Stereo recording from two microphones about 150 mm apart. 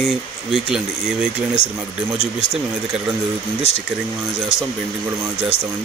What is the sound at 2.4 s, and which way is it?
Speech, 40° left (ahead or behind).